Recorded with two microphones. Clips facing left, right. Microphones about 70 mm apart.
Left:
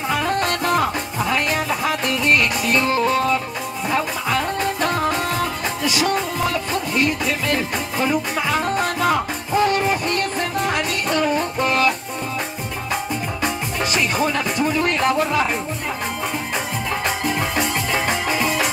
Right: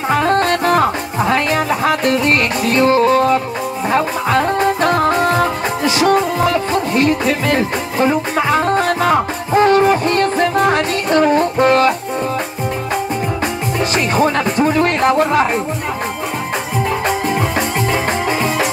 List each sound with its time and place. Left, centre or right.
0.1 s music: right
13.9 s music: right